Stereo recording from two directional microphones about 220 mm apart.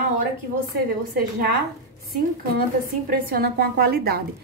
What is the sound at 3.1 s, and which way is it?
A woman's voice, 45° right (ahead or behind).